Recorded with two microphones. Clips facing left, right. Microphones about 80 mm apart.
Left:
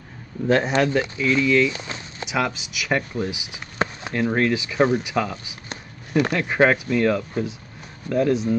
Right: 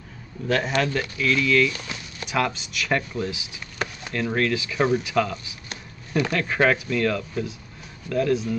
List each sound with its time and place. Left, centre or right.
0.5 s speech: left
2.2 s speech: centre
3.7 s chop: left
4.1 s speech: centre